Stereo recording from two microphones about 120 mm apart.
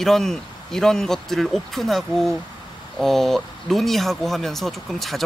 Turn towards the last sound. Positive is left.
turn(degrees=0)  # may be behind; listen again after turning